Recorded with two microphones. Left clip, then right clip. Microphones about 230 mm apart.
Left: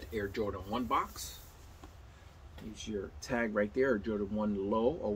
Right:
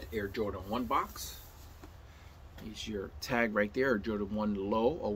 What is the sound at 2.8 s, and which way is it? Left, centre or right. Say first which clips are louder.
Speech: right 1 dB; centre.